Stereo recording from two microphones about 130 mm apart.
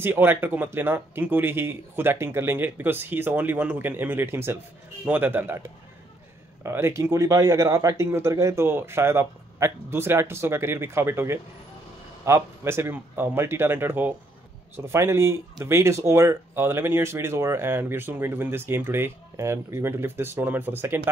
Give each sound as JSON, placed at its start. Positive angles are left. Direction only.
{"t": 0.0, "sound": "speech", "side_deg": -15}